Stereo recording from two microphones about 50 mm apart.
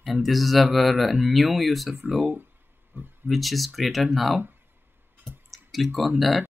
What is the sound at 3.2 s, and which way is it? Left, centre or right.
Speech, centre.